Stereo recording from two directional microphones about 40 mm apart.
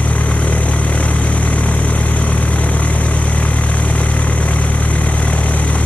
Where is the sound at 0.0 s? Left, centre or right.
Left.